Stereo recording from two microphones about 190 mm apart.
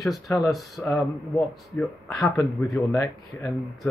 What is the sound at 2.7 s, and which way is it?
Speech, 15° left (ahead or behind).